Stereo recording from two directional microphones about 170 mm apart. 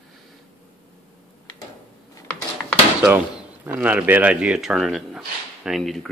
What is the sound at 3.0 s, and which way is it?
Speech, 10° right (ahead or behind).